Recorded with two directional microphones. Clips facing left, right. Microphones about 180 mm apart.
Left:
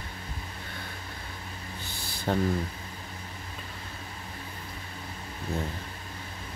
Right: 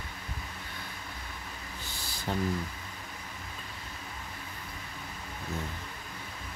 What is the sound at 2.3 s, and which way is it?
Speech, 65° left (ahead or behind).